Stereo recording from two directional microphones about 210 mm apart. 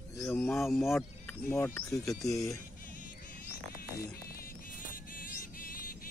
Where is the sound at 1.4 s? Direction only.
10° left (ahead or behind).